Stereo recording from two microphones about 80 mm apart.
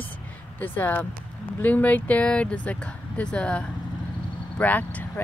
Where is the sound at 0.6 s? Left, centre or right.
Left.